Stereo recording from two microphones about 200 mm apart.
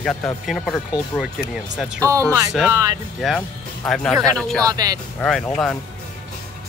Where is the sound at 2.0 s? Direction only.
15° right (ahead or behind).